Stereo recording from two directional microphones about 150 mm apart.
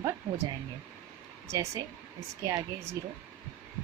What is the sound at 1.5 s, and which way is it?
Speech, 20° right (ahead or behind).